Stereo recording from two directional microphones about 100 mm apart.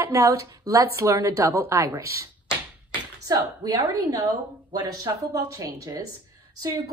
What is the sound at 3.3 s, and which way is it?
Speech, 40° right (ahead or behind).